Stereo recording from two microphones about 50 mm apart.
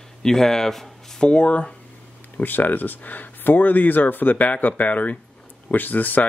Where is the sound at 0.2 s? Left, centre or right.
Centre.